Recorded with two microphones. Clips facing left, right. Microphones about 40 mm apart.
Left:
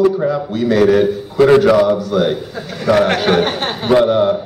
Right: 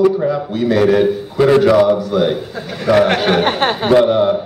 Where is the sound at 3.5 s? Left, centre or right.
Right.